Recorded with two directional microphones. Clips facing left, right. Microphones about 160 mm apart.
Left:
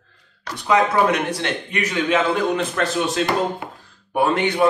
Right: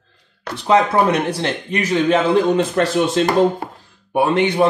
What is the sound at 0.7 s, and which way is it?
A man's voice, 30° right (ahead or behind).